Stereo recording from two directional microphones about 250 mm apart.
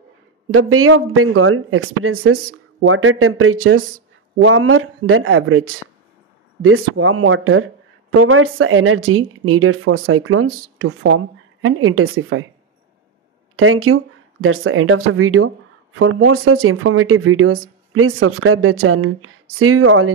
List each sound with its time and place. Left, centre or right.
0.5 s speech: right
13.6 s speech: right